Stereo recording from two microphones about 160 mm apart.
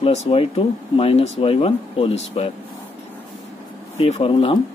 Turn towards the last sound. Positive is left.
turn(degrees=35)  # may be behind; listen again after turning